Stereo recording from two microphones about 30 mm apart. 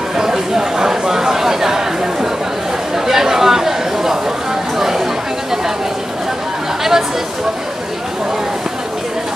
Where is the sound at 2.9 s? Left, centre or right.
Centre.